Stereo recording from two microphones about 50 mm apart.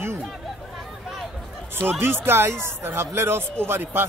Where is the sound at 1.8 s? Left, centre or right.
Right.